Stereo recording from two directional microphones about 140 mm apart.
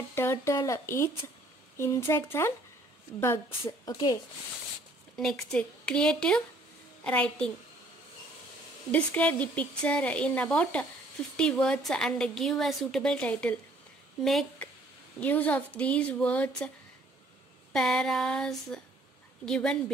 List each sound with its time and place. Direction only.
0.1 s a woman's voice: 15° left (ahead or behind)
3.8 s speech: 30° left (ahead or behind)
5.1 s a woman's voice: 5° left (ahead or behind)
8.9 s a woman's voice: 10° left (ahead or behind)
15.1 s a woman's voice: 10° left (ahead or behind)
17.7 s a woman's voice: 5° left (ahead or behind)